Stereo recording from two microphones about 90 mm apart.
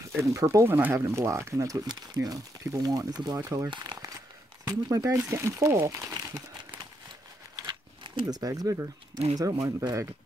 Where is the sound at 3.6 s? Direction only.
55° right (ahead or behind).